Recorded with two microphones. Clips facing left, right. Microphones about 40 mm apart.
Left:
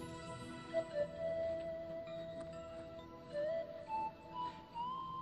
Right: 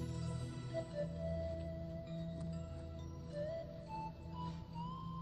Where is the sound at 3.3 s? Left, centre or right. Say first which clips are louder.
Left 5 dB; left.